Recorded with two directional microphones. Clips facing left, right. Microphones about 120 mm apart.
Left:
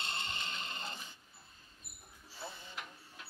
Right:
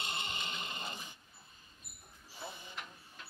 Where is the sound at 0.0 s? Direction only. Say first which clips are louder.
Right 1 dB; 15° right (ahead or behind).